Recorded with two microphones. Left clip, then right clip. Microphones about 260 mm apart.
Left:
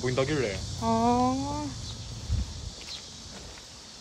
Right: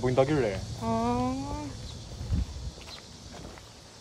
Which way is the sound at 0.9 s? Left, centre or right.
Centre.